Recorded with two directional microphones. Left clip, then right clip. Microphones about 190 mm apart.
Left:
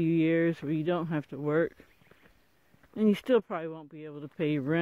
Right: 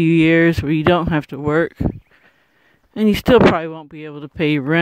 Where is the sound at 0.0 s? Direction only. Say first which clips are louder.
Right 13 dB; 50° right (ahead or behind).